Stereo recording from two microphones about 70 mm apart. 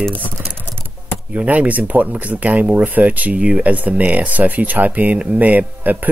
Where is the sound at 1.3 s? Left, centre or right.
Right.